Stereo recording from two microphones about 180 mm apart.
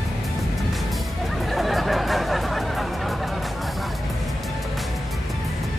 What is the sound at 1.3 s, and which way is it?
Music, centre (ahead or behind).